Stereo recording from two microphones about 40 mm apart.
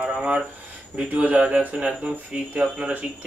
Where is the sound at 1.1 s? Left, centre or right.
Right.